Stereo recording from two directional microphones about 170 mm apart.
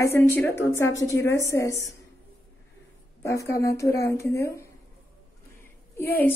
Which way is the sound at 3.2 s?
15° left (ahead or behind).